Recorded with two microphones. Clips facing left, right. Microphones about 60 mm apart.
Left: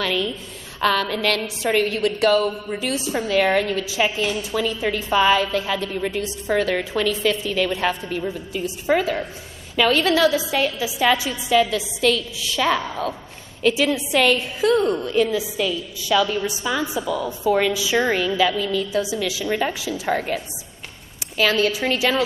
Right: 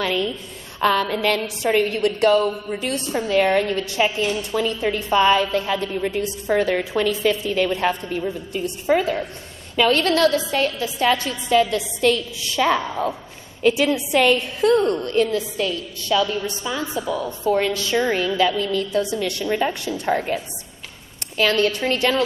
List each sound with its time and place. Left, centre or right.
0.0 s a woman's voice: centre